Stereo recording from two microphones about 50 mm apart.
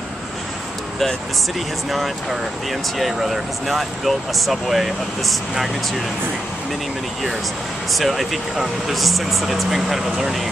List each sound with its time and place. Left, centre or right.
1.9 s speech: centre
7.9 s speech: centre